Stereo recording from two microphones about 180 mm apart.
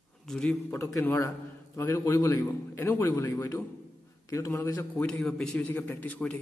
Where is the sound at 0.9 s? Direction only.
15° left (ahead or behind).